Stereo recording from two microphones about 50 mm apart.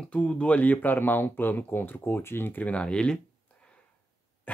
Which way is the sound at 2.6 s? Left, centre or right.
Left.